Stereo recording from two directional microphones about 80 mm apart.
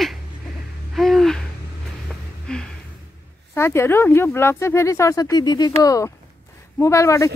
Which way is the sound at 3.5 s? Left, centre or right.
Left.